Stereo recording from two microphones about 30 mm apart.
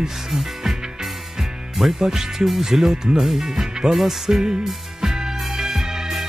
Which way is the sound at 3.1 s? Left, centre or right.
Centre.